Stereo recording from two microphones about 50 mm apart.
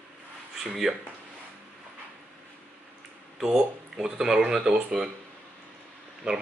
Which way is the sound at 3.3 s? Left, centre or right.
Centre.